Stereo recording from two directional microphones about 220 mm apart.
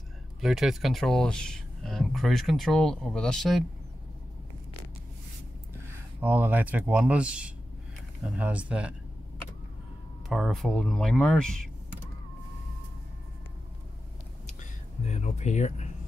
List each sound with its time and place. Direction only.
0.4 s speech: centre (ahead or behind)
6.2 s speech: 10° right (ahead or behind)
10.2 s speech: centre (ahead or behind)
14.6 s a sound: 30° left (ahead or behind)